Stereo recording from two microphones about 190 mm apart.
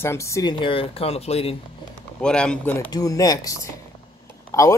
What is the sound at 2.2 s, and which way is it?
Speech, 5° left (ahead or behind).